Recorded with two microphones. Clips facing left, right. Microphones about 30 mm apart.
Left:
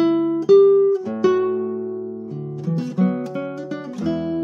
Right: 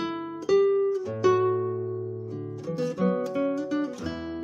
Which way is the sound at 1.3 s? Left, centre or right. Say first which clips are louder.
Left 4 dB; left.